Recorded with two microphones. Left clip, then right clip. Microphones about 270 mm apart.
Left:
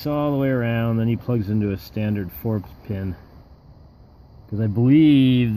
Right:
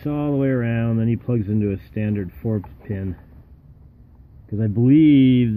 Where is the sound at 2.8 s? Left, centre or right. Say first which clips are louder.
Right 1 dB; left.